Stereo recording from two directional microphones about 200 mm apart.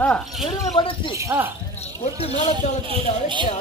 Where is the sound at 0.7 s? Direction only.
25° left (ahead or behind).